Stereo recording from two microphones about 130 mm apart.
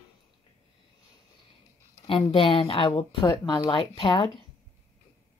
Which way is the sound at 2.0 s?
45° left (ahead or behind).